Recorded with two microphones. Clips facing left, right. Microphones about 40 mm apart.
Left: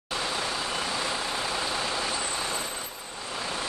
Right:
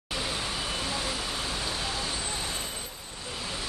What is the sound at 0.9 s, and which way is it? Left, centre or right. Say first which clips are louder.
Vehicle: left 3 dB; left.